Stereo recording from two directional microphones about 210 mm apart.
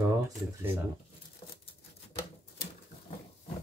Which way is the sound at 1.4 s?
25° left (ahead or behind).